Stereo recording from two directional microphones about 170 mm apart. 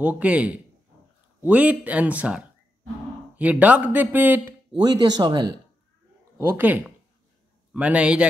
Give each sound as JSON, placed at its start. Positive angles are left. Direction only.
{"t": 0.0, "sound": "speech", "side_deg": -10}
{"t": 4.7, "sound": "speech", "side_deg": -25}
{"t": 6.3, "sound": "speech", "side_deg": -10}